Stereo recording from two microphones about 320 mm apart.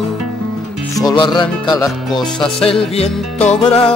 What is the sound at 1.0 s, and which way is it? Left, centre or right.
Music, centre.